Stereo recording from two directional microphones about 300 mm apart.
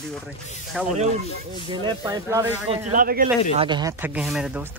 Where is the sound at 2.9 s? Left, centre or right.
Right.